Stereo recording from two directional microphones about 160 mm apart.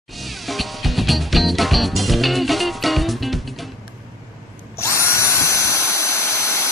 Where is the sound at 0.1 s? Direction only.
Centre (ahead or behind).